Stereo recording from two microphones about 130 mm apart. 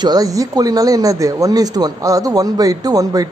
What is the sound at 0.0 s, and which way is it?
Speech, 30° right (ahead or behind).